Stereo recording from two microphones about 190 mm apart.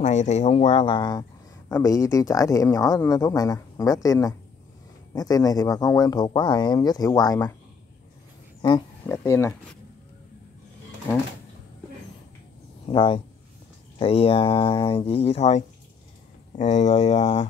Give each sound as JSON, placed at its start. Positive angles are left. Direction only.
{"t": 0.0, "sound": "speech", "side_deg": 40}
{"t": 9.0, "sound": "speech", "side_deg": 15}
{"t": 12.8, "sound": "speech", "side_deg": 25}